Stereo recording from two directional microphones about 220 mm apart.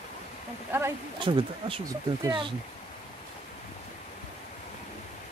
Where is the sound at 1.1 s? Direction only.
20° right (ahead or behind).